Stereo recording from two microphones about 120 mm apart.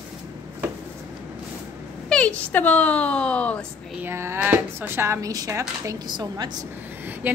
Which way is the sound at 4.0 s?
20° right (ahead or behind).